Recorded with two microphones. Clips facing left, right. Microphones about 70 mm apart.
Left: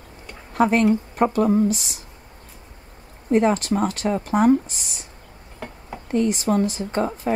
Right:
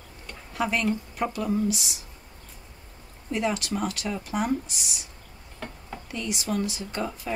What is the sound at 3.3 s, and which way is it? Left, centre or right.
Speech, left.